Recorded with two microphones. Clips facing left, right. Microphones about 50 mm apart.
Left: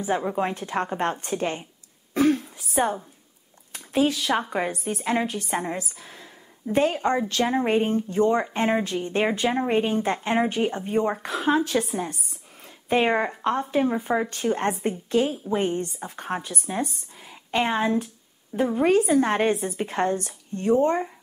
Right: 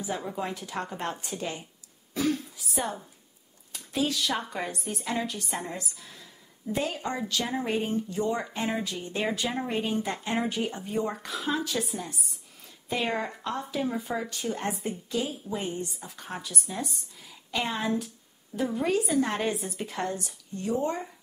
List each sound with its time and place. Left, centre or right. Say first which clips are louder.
0.1 s speech: left 8 dB; left
2.1 s throat clearing: left 7 dB; left
3.7 s a sound: left 7 dB; left
4.1 s a woman's voice: left 5 dB; left